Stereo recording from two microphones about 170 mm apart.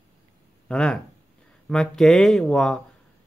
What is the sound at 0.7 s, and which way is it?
Speech, 5° left (ahead or behind).